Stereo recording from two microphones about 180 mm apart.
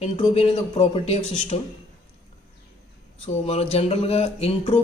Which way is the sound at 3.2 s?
35° left (ahead or behind).